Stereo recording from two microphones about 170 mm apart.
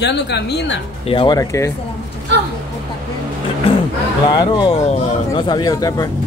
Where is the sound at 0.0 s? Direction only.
90° left.